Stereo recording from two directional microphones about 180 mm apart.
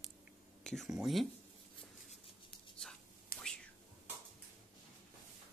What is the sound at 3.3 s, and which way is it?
Whispering, 55° left (ahead or behind).